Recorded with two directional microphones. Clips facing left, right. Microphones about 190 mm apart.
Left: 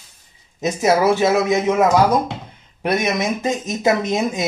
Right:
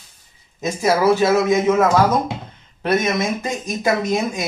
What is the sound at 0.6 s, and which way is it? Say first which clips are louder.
Speech: left 1 dB; 20° left (ahead or behind).